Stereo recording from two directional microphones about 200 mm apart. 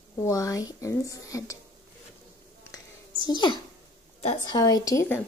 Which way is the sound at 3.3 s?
20° left (ahead or behind).